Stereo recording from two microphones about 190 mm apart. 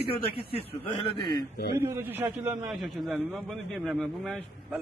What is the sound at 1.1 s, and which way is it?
Speech, 25° left (ahead or behind).